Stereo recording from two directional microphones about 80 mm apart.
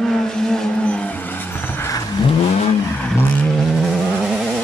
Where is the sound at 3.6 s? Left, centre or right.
Centre.